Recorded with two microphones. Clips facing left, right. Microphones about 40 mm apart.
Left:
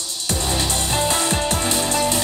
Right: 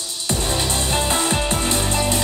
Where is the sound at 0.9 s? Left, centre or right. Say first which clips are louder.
Left 1 dB; right.